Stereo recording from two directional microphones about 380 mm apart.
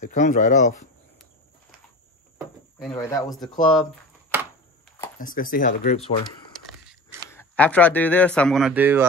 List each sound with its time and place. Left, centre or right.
0.0 s speech: centre
2.8 s speech: centre
4.3 s a sound: centre
4.8 s a sound: centre
5.2 s speech: left
7.2 s speech: centre